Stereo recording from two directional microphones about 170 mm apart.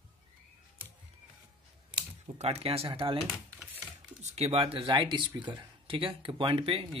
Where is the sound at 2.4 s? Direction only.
35° right (ahead or behind).